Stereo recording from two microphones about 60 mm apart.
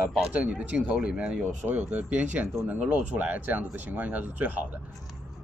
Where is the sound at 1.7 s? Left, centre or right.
Right.